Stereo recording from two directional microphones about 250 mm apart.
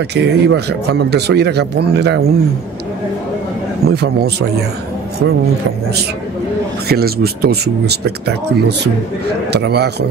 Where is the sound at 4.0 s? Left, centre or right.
Right.